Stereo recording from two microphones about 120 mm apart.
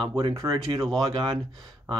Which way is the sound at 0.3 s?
25° right (ahead or behind).